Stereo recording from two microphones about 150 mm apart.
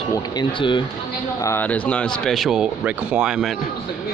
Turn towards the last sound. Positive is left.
turn(degrees=-5)  # may be behind; listen again after turning